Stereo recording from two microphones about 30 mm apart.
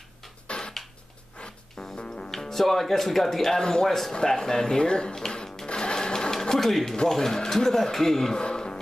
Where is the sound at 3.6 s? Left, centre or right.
Left.